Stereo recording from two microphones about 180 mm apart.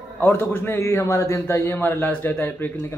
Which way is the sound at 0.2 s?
10° left (ahead or behind).